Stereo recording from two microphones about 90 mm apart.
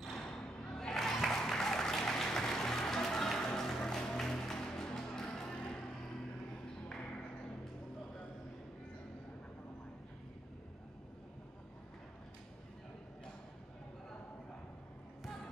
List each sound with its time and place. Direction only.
0.0 s applause: 5° left (ahead or behind)